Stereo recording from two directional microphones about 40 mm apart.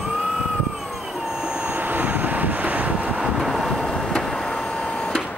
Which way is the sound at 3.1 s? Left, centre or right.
Right.